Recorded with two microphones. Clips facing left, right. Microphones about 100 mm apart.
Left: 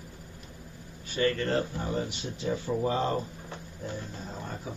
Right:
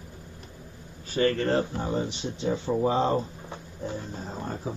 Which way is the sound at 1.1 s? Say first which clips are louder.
Right 3 dB; 35° right (ahead or behind).